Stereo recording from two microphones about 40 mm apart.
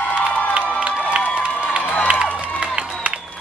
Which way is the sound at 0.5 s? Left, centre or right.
Right.